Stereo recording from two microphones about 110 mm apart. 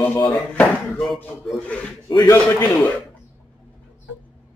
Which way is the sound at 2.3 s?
15° left (ahead or behind).